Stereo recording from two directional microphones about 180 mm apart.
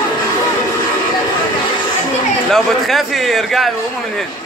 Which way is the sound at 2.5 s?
Centre (ahead or behind).